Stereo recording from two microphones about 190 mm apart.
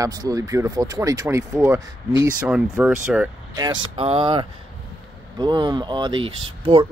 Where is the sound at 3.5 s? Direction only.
20° right (ahead or behind).